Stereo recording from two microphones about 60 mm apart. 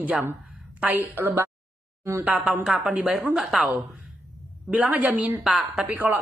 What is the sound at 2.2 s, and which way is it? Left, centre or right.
A woman's voice, right.